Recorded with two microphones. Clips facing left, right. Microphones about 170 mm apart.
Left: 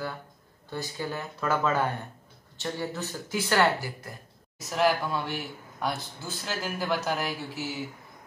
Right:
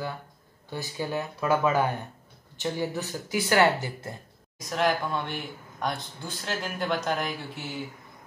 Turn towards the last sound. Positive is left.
turn(degrees=5)  # may be behind; listen again after turning